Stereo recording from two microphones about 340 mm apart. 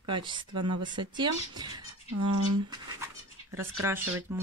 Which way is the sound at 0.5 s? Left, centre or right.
Right.